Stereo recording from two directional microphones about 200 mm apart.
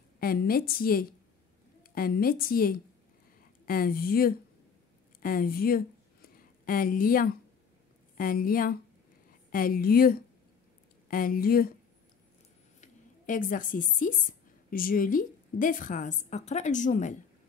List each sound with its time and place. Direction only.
0.2 s a woman's voice: 50° left (ahead or behind)
12.8 s speech: 40° left (ahead or behind)